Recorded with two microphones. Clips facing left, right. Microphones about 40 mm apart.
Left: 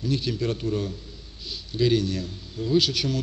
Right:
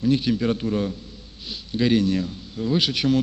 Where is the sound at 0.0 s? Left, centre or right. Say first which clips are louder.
Right 6 dB; right.